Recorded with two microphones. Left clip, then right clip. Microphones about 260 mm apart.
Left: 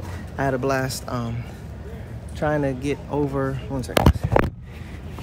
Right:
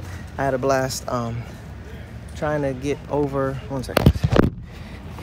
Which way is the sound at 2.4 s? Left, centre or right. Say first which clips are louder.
Even; centre.